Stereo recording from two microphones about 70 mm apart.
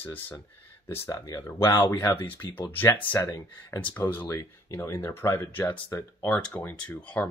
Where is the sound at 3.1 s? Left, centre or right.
Left.